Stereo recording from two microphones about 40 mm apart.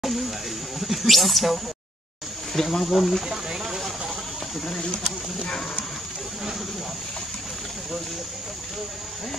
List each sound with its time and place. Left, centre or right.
0.0 s speech: centre
3.3 s a sound: centre
4.6 s speech: centre